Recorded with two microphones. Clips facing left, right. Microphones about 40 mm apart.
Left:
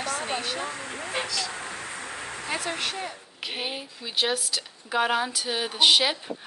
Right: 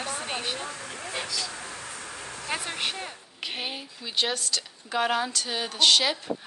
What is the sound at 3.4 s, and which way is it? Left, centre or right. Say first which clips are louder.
A woman's voice: left 1 dB; centre.